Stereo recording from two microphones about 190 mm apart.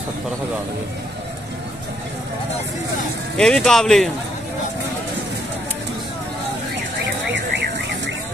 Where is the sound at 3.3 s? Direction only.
5° left (ahead or behind).